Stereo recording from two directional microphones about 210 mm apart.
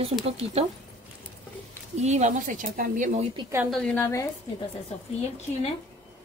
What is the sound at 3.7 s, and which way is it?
Speech, 5° left (ahead or behind).